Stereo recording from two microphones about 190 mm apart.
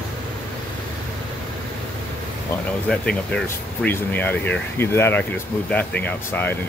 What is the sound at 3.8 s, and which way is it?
Speech, 10° left (ahead or behind).